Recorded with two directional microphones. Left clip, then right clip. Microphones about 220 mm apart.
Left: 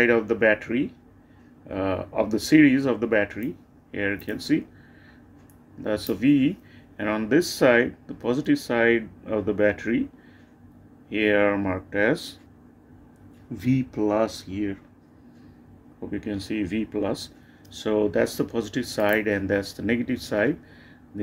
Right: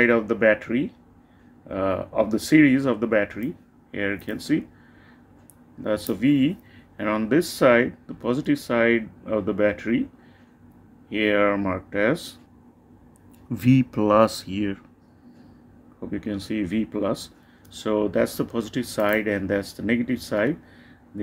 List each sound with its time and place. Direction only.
0.0 s speech: 10° right (ahead or behind)
5.8 s speech: 10° right (ahead or behind)
11.1 s speech: 5° right (ahead or behind)
13.6 s speech: 30° right (ahead or behind)
16.0 s speech: 15° right (ahead or behind)